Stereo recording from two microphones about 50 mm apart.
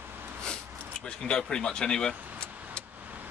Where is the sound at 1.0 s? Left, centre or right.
Centre.